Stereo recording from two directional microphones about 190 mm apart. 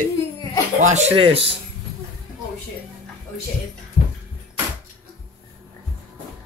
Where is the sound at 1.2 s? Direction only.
30° right (ahead or behind).